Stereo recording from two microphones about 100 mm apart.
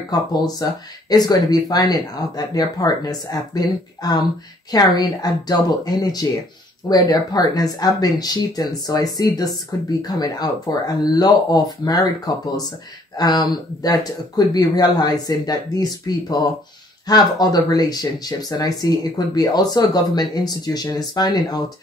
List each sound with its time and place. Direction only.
0.1 s speech: 40° left (ahead or behind)